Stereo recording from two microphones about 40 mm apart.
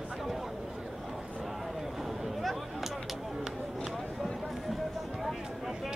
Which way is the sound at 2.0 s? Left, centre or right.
Centre.